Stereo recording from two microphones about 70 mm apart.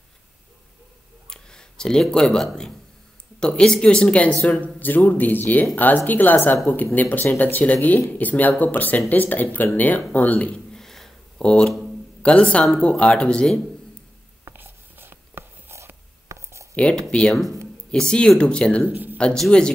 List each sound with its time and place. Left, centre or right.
1.3 s speech: centre
10.5 s a sound: centre
12.2 s speech: centre
14.5 s writing: right
16.3 s a sound: right
16.7 s speech: centre
18.9 s speech: right
19.1 s speech: centre